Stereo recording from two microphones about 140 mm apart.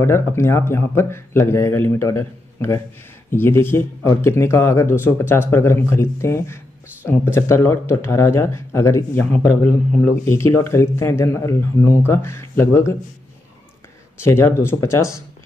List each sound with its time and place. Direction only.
0.0 s speech: 20° left (ahead or behind)
14.2 s speech: 20° left (ahead or behind)